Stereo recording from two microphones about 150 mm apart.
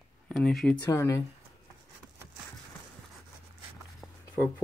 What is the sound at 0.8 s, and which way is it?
Speech, 20° left (ahead or behind).